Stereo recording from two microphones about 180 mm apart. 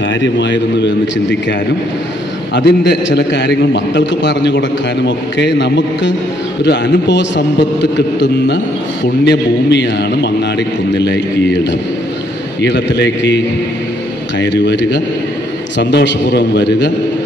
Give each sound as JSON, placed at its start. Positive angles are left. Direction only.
{"t": 0.2, "sound": "a man's voice", "side_deg": 80}
{"t": 2.5, "sound": "a man's voice", "side_deg": 75}
{"t": 14.4, "sound": "a man's voice", "side_deg": 75}